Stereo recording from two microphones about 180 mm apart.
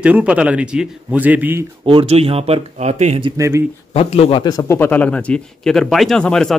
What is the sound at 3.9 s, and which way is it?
A man's voice, 35° left (ahead or behind).